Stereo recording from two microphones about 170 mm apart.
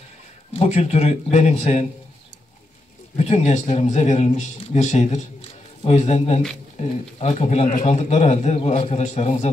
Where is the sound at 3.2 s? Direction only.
40° left (ahead or behind).